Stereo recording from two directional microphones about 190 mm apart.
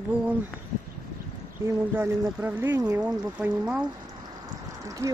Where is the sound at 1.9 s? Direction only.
10° right (ahead or behind).